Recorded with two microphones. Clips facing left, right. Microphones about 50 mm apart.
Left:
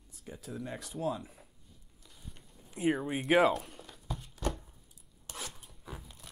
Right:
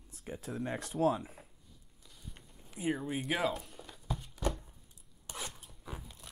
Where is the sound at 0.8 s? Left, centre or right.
Right.